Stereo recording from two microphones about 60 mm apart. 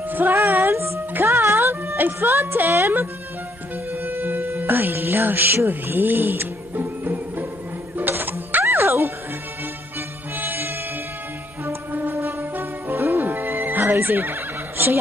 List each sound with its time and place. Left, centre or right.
0.1 s speech: right
3.9 s music: right
10.3 s music: right